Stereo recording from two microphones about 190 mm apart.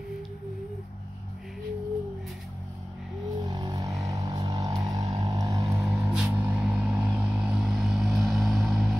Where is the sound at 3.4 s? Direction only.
20° right (ahead or behind); by 9.0 s centre (ahead or behind).